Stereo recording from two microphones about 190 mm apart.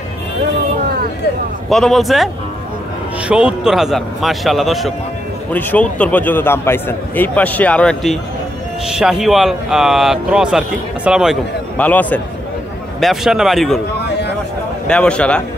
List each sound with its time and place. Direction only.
1.7 s speech: centre (ahead or behind)
3.3 s a man's voice: 5° right (ahead or behind)
11.8 s a man's voice: 10° left (ahead or behind)
14.0 s a sound: 60° left (ahead or behind)
14.9 s speech: 5° left (ahead or behind)